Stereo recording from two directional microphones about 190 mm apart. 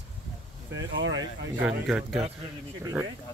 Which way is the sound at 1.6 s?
Centre (ahead or behind).